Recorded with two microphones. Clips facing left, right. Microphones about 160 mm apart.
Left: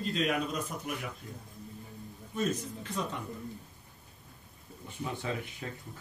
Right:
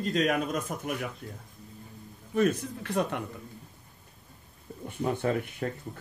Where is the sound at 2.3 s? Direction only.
60° right (ahead or behind).